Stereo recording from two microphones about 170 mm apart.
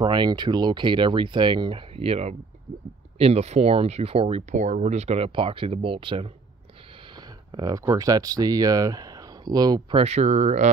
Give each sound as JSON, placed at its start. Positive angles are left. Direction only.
{"t": 0.0, "sound": "speech", "side_deg": -25}